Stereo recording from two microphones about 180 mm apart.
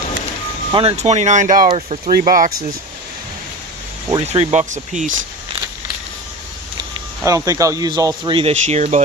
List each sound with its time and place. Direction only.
0.7 s speech: 35° right (ahead or behind)
4.3 s speech: 40° right (ahead or behind)
6.9 s speech: 20° right (ahead or behind); by 9.0 s 40° right (ahead or behind)